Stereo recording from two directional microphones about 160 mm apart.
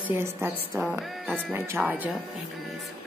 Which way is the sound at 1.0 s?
Centre (ahead or behind).